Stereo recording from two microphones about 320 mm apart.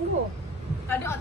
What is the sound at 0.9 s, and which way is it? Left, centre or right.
Speech, centre.